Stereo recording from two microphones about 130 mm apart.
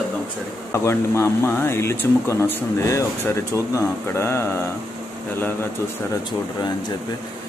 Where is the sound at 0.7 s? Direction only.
20° left (ahead or behind).